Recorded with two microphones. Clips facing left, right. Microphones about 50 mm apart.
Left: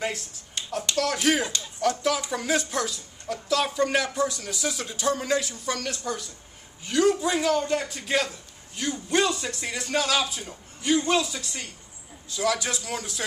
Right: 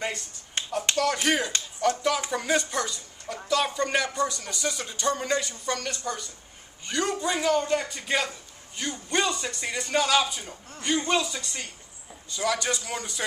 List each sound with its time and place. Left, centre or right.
0.0 s a man's voice: centre
0.6 s finger snapping: right
0.9 s a man's voice: centre